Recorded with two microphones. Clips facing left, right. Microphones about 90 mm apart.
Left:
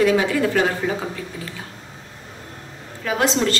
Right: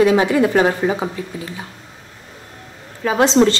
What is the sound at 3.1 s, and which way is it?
Speech, 25° right (ahead or behind).